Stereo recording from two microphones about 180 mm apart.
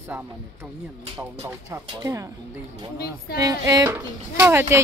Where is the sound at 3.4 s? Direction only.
20° right (ahead or behind).